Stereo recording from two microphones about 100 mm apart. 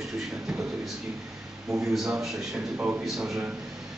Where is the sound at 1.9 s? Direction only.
5° right (ahead or behind).